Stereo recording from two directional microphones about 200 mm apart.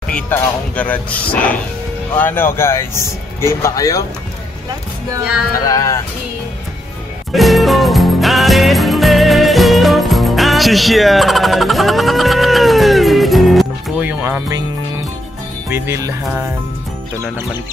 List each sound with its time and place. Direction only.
0.1 s speech: 5° left (ahead or behind)
5.7 s speech: 15° left (ahead or behind)
7.3 s music: centre (ahead or behind)
15.7 s music: 15° right (ahead or behind)